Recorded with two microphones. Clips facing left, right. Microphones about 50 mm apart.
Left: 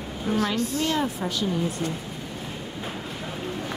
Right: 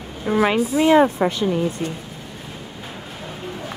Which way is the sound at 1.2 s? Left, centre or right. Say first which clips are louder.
Right 6 dB; right.